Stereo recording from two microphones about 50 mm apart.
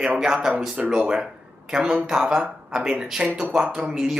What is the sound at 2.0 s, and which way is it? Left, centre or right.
Speech, centre.